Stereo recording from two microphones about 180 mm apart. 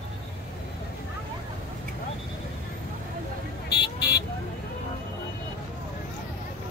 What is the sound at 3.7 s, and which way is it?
Vehicle, 65° left (ahead or behind).